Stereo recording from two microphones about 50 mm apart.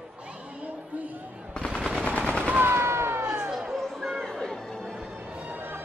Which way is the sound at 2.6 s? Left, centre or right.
Right.